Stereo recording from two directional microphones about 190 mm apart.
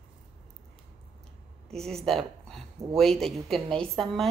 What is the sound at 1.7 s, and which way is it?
Speech, 5° left (ahead or behind).